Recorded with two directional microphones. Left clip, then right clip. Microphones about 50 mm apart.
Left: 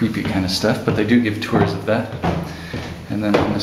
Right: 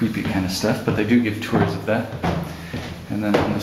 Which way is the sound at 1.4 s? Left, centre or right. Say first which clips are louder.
Left 3 dB; centre.